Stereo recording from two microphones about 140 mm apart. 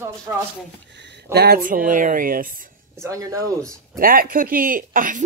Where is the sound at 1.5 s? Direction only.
90° right.